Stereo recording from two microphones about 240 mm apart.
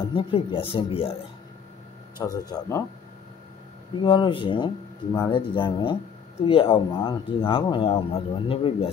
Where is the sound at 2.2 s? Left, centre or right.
Centre.